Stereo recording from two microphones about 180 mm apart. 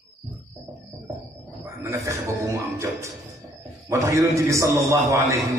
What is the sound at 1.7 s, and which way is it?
A man's voice, 15° right (ahead or behind).